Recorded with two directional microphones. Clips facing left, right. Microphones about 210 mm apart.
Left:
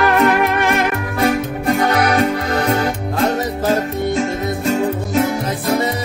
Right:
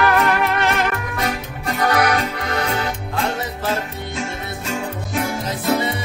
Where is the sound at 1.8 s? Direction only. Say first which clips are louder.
Left 1 dB; 25° left (ahead or behind).